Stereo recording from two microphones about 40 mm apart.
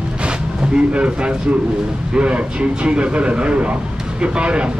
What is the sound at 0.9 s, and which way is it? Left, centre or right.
Speech, right.